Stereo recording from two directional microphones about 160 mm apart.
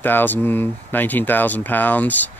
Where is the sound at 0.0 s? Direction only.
10° left (ahead or behind).